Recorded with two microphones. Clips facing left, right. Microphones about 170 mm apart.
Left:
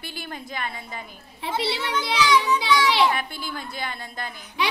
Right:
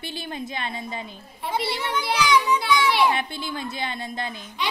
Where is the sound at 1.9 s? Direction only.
15° right (ahead or behind).